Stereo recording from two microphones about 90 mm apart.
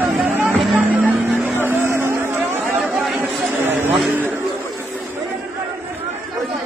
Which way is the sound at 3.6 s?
25° right (ahead or behind).